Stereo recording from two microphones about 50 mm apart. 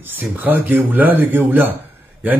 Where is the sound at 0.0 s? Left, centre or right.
Right.